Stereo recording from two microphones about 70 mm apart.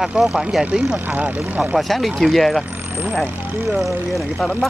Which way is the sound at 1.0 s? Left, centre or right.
Right.